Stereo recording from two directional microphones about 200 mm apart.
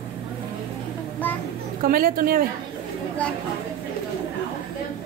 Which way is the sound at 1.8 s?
45° right (ahead or behind).